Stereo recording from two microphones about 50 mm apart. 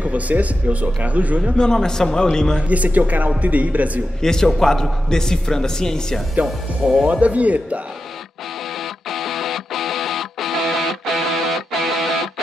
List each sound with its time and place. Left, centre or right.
0.0 s speech: right
1.6 s a man's voice: centre
2.7 s speech: right
4.2 s a man's voice: centre
7.1 s speech: right
9.1 s music: centre